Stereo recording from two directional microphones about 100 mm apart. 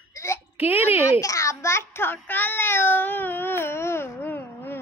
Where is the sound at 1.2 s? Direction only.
30° left (ahead or behind).